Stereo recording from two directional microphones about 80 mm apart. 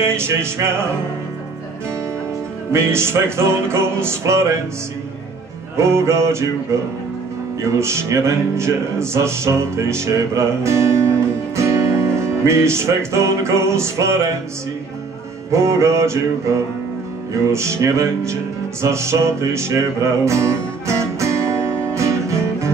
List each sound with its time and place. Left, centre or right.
0.0 s music: right
2.7 s music: right
5.8 s music: right
15.5 s music: right